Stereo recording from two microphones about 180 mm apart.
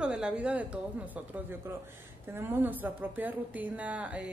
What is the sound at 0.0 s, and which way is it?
Speech, 5° right (ahead or behind).